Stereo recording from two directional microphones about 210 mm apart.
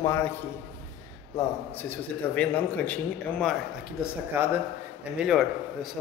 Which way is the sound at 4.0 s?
10° right (ahead or behind).